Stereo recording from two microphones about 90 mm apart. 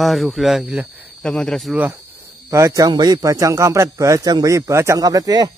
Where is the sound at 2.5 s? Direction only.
35° right (ahead or behind).